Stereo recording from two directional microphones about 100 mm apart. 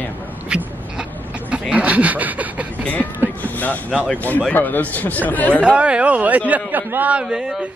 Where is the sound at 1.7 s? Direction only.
15° right (ahead or behind).